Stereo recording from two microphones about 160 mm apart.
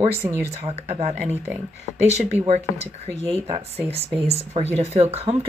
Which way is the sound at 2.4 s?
40° right (ahead or behind).